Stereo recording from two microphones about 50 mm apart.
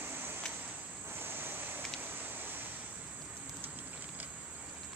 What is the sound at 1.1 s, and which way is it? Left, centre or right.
Waves, right.